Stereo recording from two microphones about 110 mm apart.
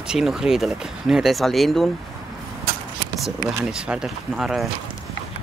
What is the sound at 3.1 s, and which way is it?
Speech, centre (ahead or behind).